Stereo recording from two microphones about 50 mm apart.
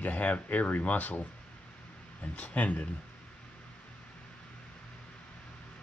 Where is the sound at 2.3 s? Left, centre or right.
Left.